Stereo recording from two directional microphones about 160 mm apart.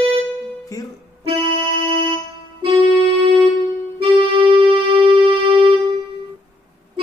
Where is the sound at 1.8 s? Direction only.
35° right (ahead or behind).